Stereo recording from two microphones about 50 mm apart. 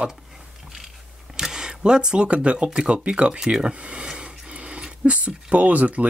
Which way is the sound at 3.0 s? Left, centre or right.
Right.